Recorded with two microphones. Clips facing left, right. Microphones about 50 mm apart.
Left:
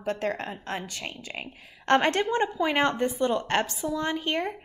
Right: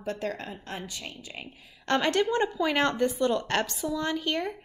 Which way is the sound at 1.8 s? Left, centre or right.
Left.